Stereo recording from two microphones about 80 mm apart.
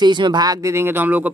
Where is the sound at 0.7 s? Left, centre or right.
Right.